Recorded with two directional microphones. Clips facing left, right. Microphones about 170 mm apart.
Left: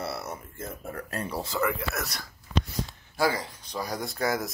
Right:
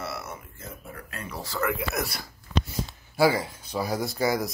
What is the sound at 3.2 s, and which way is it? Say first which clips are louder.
Speech: right 5 dB; 10° right (ahead or behind).